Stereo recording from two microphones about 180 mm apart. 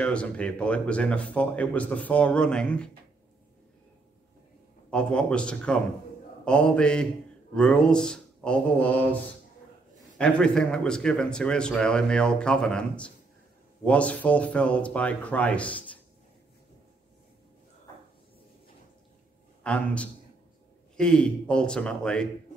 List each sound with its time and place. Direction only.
0.0 s speech: 5° left (ahead or behind)
4.9 s speech: 5° left (ahead or behind)
19.6 s a man's voice: 5° left (ahead or behind)